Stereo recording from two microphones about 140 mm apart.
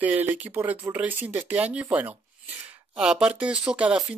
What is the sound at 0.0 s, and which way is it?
Speech, 10° right (ahead or behind).